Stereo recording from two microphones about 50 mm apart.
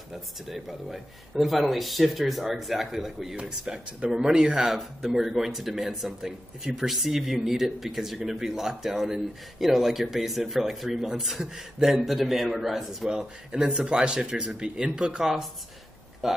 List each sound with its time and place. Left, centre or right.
0.5 s speech: centre
13.1 s speech: centre